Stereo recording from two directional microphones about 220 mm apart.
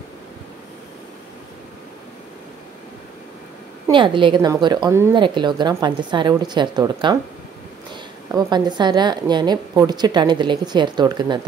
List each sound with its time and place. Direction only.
3.9 s a woman's voice: 20° right (ahead or behind)